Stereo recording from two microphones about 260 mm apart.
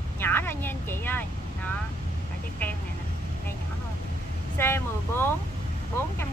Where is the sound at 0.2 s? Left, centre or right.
Centre.